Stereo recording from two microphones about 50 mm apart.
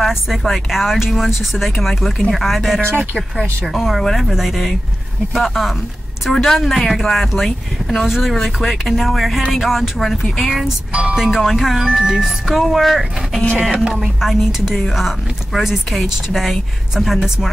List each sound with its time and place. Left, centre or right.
0.0 s speech: centre
10.9 s speech: right
11.2 s speech: centre